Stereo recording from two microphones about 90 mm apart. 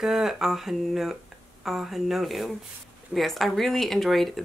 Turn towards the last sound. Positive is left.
turn(degrees=0)  # may be behind; listen again after turning